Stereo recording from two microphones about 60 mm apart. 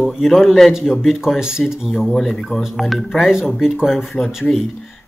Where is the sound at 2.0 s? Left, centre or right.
Centre.